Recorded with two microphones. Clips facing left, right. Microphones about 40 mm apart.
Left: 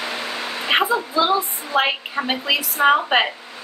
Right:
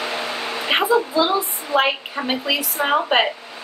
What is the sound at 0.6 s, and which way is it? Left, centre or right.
A woman's voice, centre.